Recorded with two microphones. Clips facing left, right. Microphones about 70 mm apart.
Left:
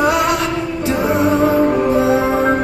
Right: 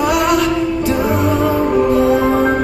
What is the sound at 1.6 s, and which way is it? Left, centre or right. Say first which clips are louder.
Music: right 1 dB; centre.